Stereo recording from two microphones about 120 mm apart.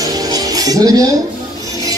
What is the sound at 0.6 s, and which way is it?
Cutlery, 30° right (ahead or behind).